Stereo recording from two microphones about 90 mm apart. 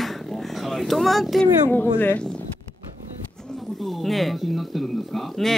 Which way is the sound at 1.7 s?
20° left (ahead or behind).